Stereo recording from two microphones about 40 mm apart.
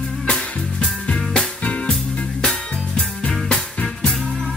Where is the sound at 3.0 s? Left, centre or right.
Left.